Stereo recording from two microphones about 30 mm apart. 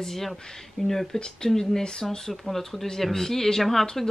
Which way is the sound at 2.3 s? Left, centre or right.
Centre.